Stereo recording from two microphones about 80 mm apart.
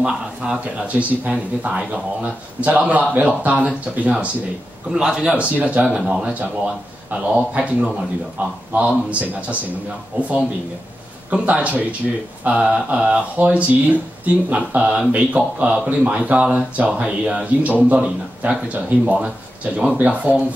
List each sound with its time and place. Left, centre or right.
0.0 s a man's voice: centre